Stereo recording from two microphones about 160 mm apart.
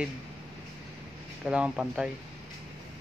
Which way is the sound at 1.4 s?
5° right (ahead or behind).